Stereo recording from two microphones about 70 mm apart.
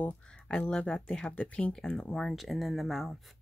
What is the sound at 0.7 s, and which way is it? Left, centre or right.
Speech, centre.